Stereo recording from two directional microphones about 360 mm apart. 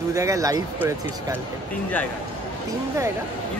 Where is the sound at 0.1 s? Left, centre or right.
Centre.